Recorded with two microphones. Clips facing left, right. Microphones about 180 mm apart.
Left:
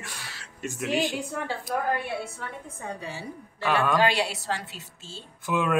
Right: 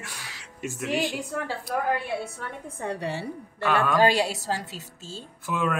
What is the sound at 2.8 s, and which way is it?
Speech, 75° right (ahead or behind).